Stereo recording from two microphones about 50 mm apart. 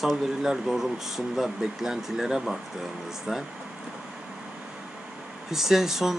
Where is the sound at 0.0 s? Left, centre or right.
Centre.